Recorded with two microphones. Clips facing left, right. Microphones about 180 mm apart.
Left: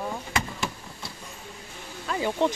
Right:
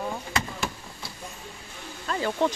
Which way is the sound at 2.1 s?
15° left (ahead or behind).